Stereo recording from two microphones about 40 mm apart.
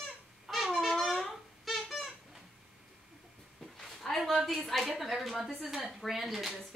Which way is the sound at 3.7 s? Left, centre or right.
Centre.